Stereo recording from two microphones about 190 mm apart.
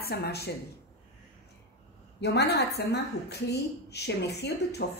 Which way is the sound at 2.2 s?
60° left (ahead or behind).